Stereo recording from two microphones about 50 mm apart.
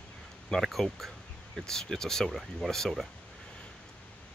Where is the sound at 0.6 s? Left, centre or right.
Centre.